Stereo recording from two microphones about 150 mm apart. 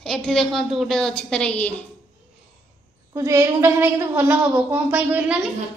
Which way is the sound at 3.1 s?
20° right (ahead or behind).